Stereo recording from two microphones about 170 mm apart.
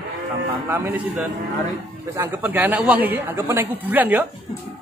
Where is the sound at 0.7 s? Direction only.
10° right (ahead or behind).